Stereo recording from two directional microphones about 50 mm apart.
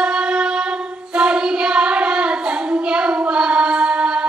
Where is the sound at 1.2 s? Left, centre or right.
Centre.